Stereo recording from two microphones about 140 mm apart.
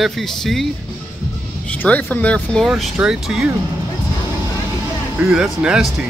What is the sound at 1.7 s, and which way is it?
Speech, 10° left (ahead or behind).